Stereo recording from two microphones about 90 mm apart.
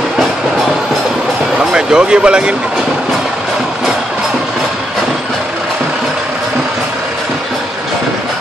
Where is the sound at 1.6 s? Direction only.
10° right (ahead or behind).